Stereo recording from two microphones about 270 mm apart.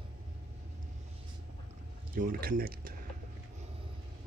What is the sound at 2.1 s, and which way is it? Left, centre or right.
Speech, right.